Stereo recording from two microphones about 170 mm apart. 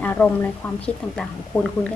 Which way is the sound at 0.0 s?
10° left (ahead or behind).